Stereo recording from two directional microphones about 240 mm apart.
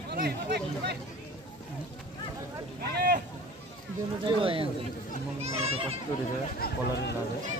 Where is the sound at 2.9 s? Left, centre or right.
Right.